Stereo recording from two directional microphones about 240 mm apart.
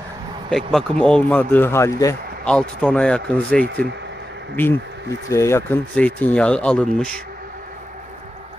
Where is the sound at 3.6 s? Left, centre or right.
Right.